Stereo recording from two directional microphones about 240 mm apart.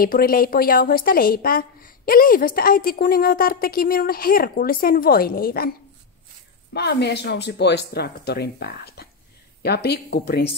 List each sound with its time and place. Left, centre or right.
0.0 s a woman's voice: left
6.7 s speech: left